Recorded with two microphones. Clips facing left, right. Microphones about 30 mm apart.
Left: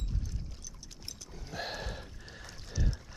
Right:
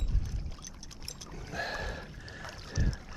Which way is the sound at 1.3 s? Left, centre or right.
Centre.